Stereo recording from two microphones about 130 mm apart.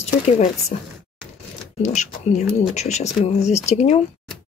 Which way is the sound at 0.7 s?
55° left (ahead or behind).